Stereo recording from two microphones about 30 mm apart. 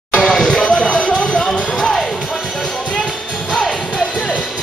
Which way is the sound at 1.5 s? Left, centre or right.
Left.